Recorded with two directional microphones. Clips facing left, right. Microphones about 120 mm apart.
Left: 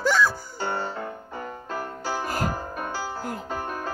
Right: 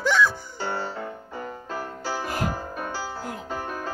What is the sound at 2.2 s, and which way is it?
Music, centre (ahead or behind).